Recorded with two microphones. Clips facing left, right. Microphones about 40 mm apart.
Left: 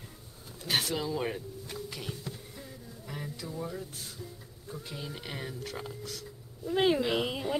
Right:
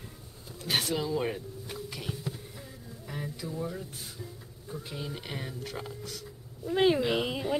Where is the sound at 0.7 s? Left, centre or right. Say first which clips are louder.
Right 1 dB; centre.